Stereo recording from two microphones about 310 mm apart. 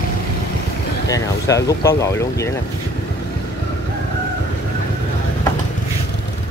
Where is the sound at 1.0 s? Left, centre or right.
Centre.